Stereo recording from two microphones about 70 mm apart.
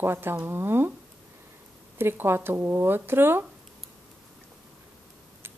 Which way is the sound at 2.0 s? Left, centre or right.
Right.